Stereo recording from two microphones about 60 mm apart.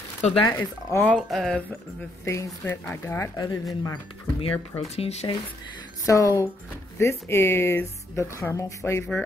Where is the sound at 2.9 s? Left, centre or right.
Left.